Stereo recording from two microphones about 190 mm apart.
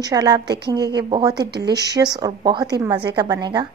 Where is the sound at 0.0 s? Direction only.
20° right (ahead or behind).